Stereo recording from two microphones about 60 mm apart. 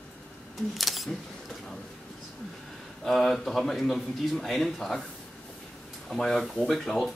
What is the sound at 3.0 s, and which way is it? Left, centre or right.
Speech, centre.